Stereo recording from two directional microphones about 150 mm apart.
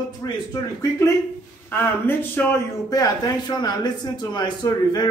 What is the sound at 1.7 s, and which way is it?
Speech, 15° left (ahead or behind).